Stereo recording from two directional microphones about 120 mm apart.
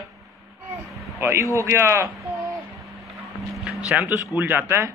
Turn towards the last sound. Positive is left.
turn(degrees=-20)  # may be behind; listen again after turning